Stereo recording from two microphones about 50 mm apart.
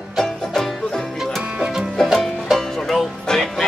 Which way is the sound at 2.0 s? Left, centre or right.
Centre.